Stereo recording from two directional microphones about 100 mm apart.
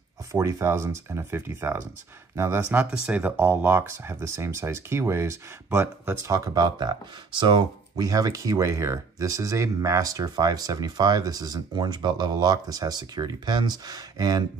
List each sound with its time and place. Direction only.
0.3 s speech: 30° right (ahead or behind)
2.8 s speech: 15° right (ahead or behind); by 14.4 s 40° right (ahead or behind)